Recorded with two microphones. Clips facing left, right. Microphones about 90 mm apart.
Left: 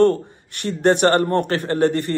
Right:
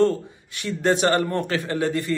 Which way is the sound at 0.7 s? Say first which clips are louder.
Left 4 dB; 55° left (ahead or behind).